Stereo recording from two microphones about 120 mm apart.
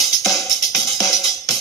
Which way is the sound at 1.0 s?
30° left (ahead or behind).